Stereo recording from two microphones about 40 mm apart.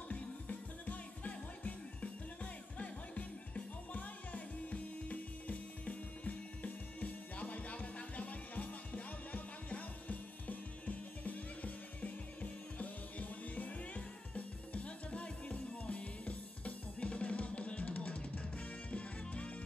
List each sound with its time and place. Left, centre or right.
0.1 s music: left